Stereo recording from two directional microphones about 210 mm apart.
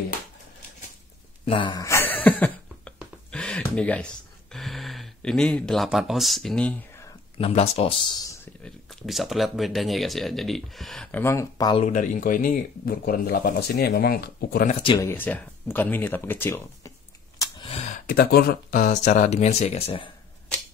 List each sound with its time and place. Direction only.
1.4 s a sound: 25° left (ahead or behind); by 7.1 s 5° left (ahead or behind)
7.3 s speech: 30° left (ahead or behind)
8.6 s speech: centre (ahead or behind); by 11.8 s 20° left (ahead or behind)
11.8 s speech: 35° left (ahead or behind)
14.7 s speech: 25° left (ahead or behind)
15.0 s speech: 10° left (ahead or behind)
17.4 s a sound: 25° left (ahead or behind)
18.0 s speech: 45° left (ahead or behind); by 20.1 s 30° left (ahead or behind)